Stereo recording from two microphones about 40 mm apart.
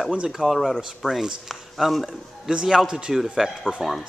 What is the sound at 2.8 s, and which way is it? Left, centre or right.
Speech, centre.